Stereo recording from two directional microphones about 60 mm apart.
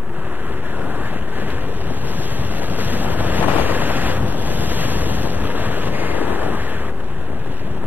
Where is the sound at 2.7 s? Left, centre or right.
Right.